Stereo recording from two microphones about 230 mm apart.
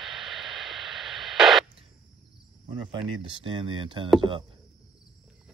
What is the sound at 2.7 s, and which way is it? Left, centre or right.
Speech, right.